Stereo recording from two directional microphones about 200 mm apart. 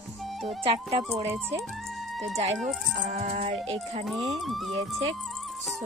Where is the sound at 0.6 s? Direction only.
30° right (ahead or behind).